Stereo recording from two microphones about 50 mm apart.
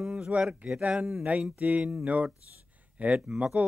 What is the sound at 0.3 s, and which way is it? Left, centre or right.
Speech, right.